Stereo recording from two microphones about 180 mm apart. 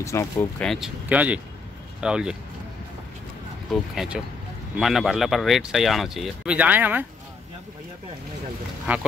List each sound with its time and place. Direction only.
0.0 s speech: 15° left (ahead or behind)
0.7 s speech: centre (ahead or behind)
3.9 s speech: centre (ahead or behind)
8.9 s speech: 10° right (ahead or behind)